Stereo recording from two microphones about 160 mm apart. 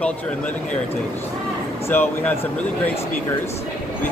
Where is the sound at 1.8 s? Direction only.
10° left (ahead or behind).